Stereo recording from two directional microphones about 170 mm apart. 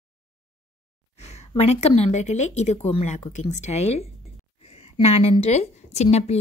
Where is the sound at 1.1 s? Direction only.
40° left (ahead or behind).